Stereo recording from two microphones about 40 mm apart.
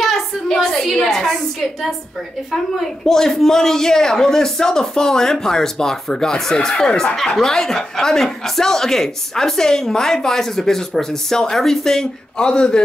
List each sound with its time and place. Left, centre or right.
0.5 s a sound: centre
2.5 s speech: centre
6.9 s speech: left
7.4 s speech: centre